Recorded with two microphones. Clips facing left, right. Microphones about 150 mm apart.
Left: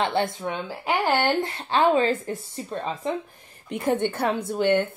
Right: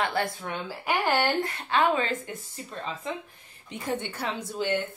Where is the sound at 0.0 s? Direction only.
25° left (ahead or behind).